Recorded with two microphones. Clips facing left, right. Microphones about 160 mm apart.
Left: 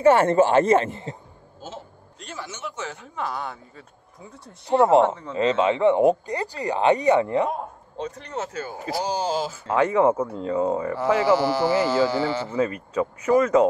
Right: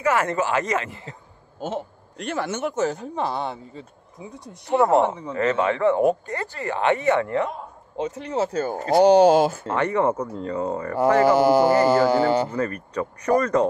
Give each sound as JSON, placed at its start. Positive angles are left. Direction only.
{"t": 0.0, "sound": "speech", "side_deg": 30}
{"t": 1.6, "sound": "a man's voice", "side_deg": -65}
{"t": 4.2, "sound": "speech", "side_deg": -15}
{"t": 4.6, "sound": "speech", "side_deg": 15}
{"t": 5.0, "sound": "speech", "side_deg": -15}
{"t": 5.3, "sound": "speech", "side_deg": 20}
{"t": 8.0, "sound": "speech", "side_deg": -10}
{"t": 8.4, "sound": "speech", "side_deg": -40}
{"t": 8.9, "sound": "speech", "side_deg": -65}
{"t": 9.8, "sound": "speech", "side_deg": 0}
{"t": 11.0, "sound": "a man's voice", "side_deg": -50}
{"t": 12.4, "sound": "speech", "side_deg": 5}